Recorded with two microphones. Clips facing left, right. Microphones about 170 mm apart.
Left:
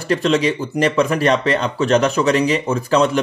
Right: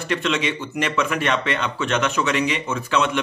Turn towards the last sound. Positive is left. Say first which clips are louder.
# left 6 dB
turn(degrees=35)  # may be behind; listen again after turning